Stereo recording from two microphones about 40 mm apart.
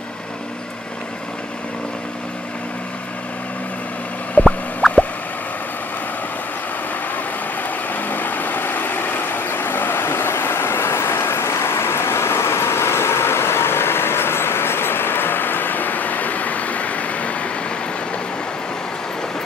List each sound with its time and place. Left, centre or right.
4.4 s a sound: left
4.8 s plop: centre
7.9 s vehicle: left